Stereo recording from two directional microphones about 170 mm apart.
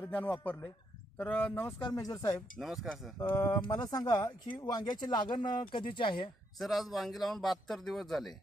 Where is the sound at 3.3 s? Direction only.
20° left (ahead or behind).